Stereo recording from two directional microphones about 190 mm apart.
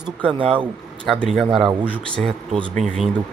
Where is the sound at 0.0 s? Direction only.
5° right (ahead or behind).